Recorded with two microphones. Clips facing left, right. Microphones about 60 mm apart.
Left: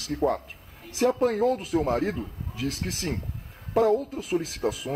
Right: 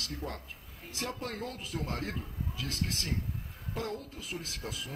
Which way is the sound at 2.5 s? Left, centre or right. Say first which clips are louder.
Left 7 dB; left.